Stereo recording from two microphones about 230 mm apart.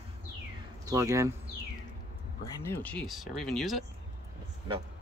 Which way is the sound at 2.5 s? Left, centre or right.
Centre.